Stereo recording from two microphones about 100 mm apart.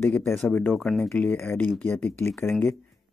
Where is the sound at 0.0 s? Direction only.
20° left (ahead or behind).